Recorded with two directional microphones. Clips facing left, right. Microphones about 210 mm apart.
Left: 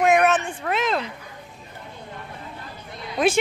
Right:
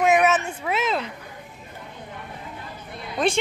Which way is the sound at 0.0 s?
Centre (ahead or behind).